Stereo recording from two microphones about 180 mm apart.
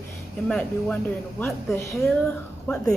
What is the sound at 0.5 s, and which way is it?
Speech, 5° left (ahead or behind).